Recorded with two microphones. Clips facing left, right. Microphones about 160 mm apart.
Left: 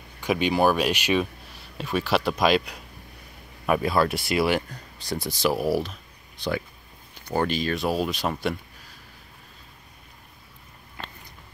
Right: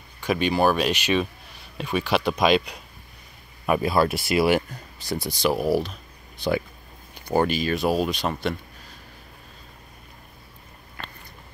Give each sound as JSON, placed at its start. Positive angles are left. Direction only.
{"t": 0.2, "sound": "speech", "side_deg": 15}
{"t": 7.2, "sound": "speech", "side_deg": -10}
{"t": 11.0, "sound": "a sound", "side_deg": 20}